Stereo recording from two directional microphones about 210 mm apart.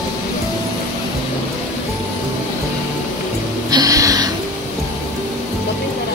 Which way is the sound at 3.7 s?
15° right (ahead or behind).